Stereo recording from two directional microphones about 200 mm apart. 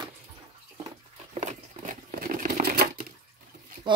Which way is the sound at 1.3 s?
40° right (ahead or behind).